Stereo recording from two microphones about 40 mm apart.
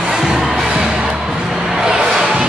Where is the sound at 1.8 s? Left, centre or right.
Centre.